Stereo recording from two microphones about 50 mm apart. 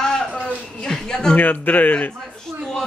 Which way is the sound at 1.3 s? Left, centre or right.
Left.